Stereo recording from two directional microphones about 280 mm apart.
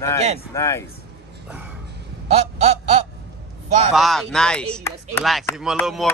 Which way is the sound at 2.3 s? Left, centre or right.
Right.